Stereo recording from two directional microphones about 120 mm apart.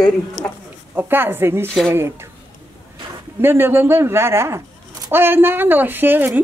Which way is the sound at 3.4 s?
20° right (ahead or behind).